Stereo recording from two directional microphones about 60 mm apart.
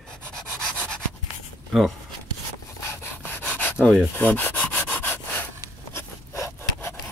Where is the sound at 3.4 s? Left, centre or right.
Centre.